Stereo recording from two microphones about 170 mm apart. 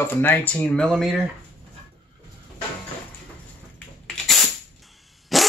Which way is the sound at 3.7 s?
5° left (ahead or behind).